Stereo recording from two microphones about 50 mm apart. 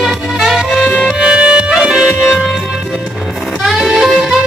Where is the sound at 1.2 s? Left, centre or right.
Centre.